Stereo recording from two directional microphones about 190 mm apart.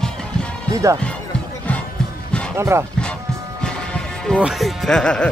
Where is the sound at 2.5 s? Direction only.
15° right (ahead or behind).